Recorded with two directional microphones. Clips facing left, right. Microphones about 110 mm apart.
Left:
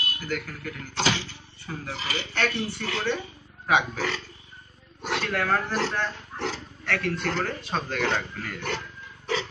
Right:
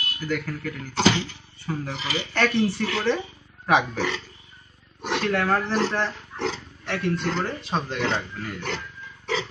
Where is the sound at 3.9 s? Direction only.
20° right (ahead or behind).